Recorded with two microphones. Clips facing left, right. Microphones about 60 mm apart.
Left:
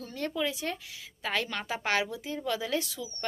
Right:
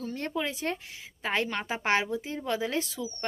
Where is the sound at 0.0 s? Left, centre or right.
Right.